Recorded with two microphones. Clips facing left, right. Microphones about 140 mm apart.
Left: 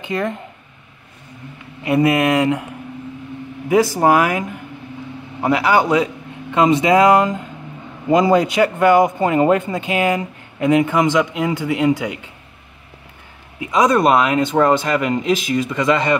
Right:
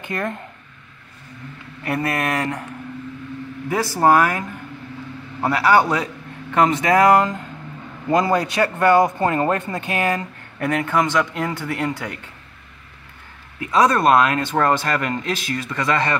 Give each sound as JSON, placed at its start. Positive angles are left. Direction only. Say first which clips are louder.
{"t": 0.0, "sound": "speech", "louder": "left 4 dB", "side_deg": 15}
{"t": 1.8, "sound": "a man's voice", "louder": "left 8 dB", "side_deg": 15}
{"t": 3.6, "sound": "a man's voice", "louder": "left 3 dB", "side_deg": 15}
{"t": 13.6, "sound": "a man's voice", "louder": "left 2 dB", "side_deg": 15}